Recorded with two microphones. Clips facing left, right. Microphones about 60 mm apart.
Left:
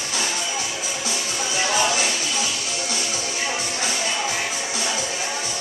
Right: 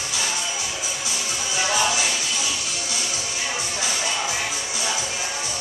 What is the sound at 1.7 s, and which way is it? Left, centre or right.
Music, centre.